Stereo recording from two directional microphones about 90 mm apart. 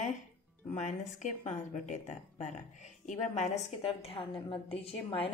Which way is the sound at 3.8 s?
90° left.